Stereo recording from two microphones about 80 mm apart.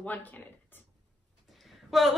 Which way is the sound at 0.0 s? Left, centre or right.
Left.